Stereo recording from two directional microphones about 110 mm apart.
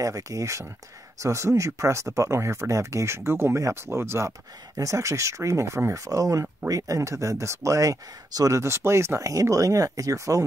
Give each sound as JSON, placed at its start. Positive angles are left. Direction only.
{"t": 0.0, "sound": "speech", "side_deg": -30}